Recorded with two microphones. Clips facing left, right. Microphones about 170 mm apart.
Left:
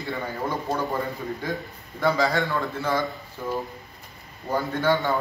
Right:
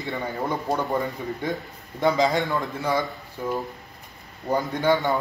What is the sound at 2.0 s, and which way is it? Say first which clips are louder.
A man's voice: right 2 dB; 20° right (ahead or behind).